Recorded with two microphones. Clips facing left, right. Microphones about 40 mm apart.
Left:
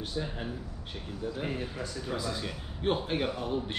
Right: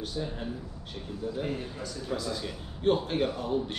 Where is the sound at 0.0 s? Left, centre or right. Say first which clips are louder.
Right 1 dB; centre.